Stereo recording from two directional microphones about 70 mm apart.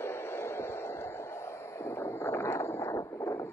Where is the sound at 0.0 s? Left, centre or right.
Left.